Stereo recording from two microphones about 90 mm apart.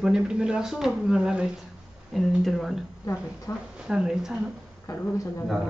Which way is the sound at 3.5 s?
35° left (ahead or behind).